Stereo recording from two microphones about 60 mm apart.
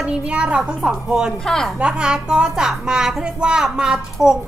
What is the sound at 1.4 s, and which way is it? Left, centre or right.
Speech, centre.